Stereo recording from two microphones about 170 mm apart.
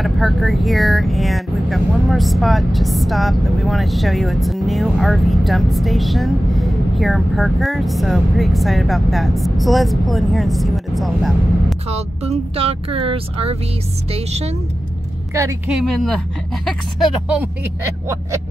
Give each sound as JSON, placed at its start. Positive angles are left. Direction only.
{"t": 0.0, "sound": "speech", "side_deg": 0}
{"t": 12.3, "sound": "speech", "side_deg": -35}
{"t": 15.3, "sound": "a woman's voice", "side_deg": -15}
{"t": 15.9, "sound": "speech", "side_deg": 0}